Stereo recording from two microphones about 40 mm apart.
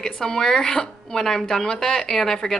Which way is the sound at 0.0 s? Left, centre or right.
Centre.